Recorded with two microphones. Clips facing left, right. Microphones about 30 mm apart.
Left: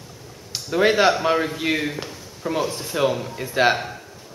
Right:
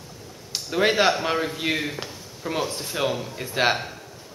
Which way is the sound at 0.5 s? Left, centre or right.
Centre.